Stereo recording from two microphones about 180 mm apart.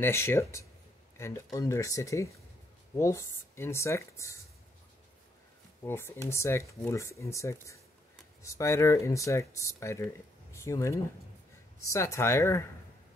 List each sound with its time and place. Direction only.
0.0 s speech: 15° left (ahead or behind)
5.9 s speech: 15° left (ahead or behind)